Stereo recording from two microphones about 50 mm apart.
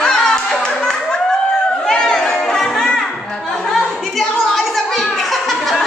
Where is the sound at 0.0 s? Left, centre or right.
Centre.